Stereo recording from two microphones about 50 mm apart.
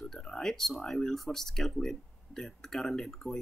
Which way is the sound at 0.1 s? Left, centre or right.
Centre.